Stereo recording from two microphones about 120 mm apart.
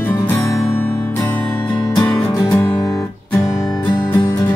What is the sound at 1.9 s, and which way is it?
Music, 35° left (ahead or behind).